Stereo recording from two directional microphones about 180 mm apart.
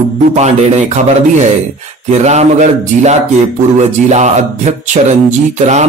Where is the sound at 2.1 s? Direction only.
40° right (ahead or behind).